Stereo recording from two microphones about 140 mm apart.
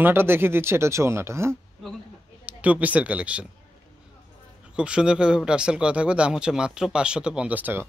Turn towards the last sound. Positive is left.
turn(degrees=-10)  # may be behind; listen again after turning